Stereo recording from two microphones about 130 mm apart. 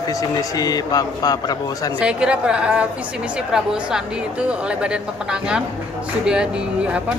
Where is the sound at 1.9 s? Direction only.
10° right (ahead or behind).